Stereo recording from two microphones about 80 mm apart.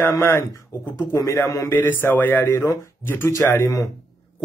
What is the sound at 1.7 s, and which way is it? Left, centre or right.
A man's voice, left.